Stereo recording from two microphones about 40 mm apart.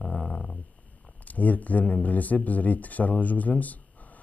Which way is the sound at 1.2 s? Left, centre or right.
Left.